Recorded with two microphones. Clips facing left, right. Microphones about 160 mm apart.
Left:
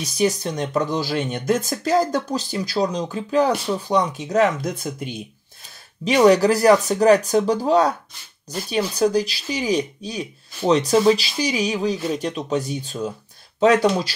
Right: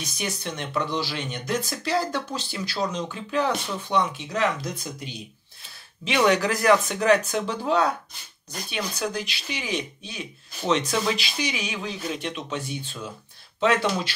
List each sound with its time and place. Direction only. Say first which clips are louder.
0.0 s speech: left 10 dB; 35° left (ahead or behind); by 5.2 s 50° left (ahead or behind)
6.0 s speech: left 7 dB; 35° left (ahead or behind)